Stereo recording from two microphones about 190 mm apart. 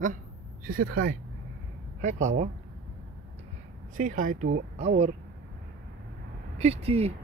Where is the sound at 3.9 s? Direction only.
45° right (ahead or behind).